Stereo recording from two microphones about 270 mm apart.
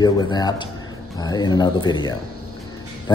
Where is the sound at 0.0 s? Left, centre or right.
Centre.